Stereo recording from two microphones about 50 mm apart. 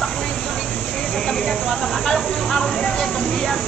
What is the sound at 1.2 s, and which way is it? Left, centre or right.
Speech, centre.